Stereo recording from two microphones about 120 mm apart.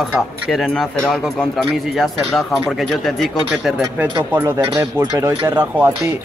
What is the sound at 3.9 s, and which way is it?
Speech, 20° right (ahead or behind).